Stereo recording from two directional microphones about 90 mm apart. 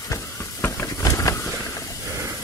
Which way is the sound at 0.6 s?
30° left (ahead or behind).